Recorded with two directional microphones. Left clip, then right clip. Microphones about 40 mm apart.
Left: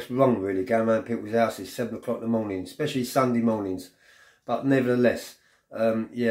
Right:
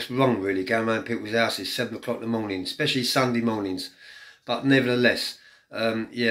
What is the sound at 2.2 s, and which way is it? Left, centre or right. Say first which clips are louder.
Speech: left 3 dB; left.